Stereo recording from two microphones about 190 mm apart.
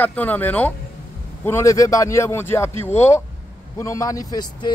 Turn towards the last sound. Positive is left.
turn(degrees=20)  # may be behind; listen again after turning